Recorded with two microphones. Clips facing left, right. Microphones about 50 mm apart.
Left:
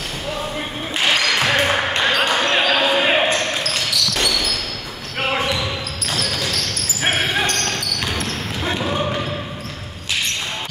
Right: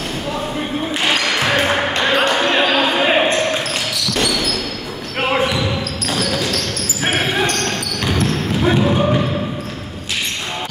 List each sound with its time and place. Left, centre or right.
1.5 s basketball bounce: centre
4.1 s a sound: centre
6.0 s basketball bounce: centre